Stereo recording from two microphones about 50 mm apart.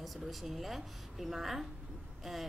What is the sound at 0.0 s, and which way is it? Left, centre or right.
A woman's voice, centre.